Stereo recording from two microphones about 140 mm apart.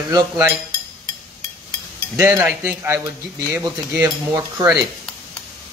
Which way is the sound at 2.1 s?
20° right (ahead or behind).